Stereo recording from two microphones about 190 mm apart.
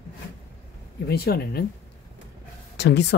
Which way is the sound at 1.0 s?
55° left (ahead or behind).